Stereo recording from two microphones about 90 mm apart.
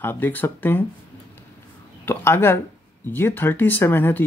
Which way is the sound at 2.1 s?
25° left (ahead or behind).